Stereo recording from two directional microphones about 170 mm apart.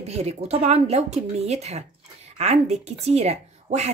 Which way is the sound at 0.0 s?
40° right (ahead or behind).